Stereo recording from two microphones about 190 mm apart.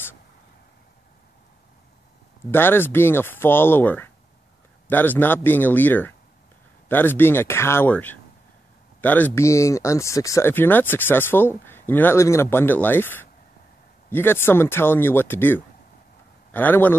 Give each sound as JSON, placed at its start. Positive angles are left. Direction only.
{"t": 2.5, "sound": "speech", "side_deg": 10}